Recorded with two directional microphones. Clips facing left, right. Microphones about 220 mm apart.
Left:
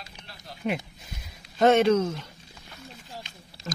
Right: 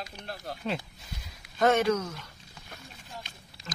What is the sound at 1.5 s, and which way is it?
Speech, 25° left (ahead or behind).